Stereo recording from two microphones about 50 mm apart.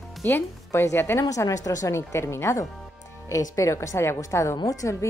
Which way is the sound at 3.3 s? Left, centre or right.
Left.